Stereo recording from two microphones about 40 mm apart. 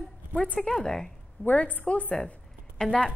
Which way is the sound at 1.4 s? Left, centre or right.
Left.